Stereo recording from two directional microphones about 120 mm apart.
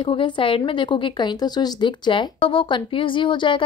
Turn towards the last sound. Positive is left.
turn(degrees=45)  # may be behind; listen again after turning